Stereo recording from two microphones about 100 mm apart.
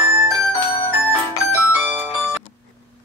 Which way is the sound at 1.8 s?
20° right (ahead or behind).